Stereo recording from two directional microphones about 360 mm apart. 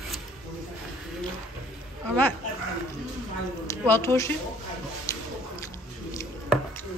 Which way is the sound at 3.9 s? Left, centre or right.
Centre.